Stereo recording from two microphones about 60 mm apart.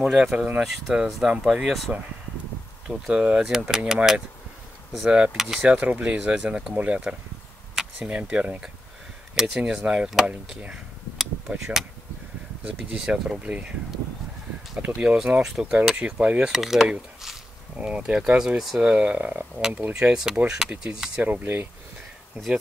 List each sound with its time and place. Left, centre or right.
0.1 s speech: centre
2.9 s speech: centre
7.7 s a sound: centre
8.2 s speech: centre
10.7 s a sound: centre
12.6 s speech: centre
15.0 s speech: centre
16.5 s speech: centre
17.7 s speech: centre
18.6 s speech: centre
18.9 s speech: right
19.9 s speech: centre
21.2 s speech: right